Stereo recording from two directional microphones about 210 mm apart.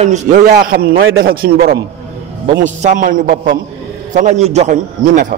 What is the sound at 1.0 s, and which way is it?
Speech, 65° right (ahead or behind).